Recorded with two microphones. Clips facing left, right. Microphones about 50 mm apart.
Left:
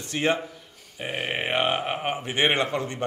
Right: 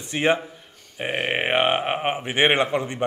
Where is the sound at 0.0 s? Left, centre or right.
Right.